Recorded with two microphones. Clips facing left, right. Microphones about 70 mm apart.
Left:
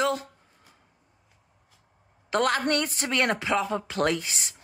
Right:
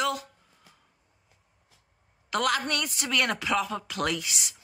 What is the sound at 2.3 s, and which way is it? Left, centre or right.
Speech, left.